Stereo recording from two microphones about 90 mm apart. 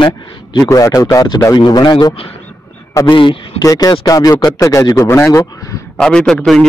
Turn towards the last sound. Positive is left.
turn(degrees=5)  # may be behind; listen again after turning